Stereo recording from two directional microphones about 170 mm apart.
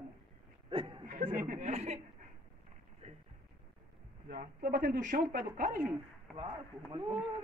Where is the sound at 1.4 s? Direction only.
40° right (ahead or behind).